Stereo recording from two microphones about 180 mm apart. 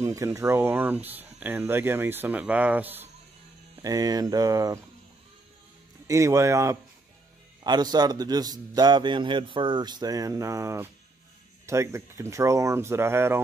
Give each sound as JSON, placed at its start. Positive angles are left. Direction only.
{"t": 0.0, "sound": "speech", "side_deg": -15}
{"t": 3.8, "sound": "a man's voice", "side_deg": -20}
{"t": 6.0, "sound": "a man's voice", "side_deg": -15}